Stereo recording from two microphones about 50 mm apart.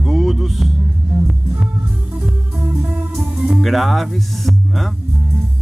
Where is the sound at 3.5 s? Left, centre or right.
Centre.